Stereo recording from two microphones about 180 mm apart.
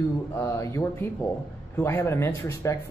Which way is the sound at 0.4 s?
15° left (ahead or behind).